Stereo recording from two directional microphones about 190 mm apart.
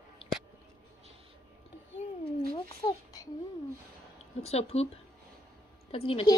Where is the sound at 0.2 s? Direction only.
30° left (ahead or behind).